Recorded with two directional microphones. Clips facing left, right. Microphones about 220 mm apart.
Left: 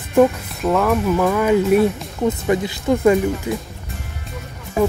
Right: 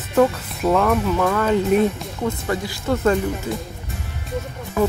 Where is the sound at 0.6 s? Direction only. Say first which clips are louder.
Left 1 dB; centre (ahead or behind).